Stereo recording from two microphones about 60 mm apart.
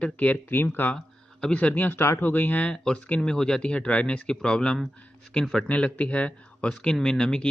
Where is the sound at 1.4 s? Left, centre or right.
Left.